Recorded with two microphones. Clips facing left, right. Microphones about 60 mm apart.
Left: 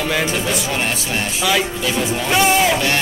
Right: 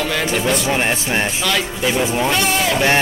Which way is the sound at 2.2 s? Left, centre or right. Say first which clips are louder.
Left 3 dB; centre.